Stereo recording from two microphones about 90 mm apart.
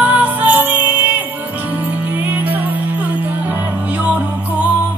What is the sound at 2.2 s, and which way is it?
Music, 20° right (ahead or behind).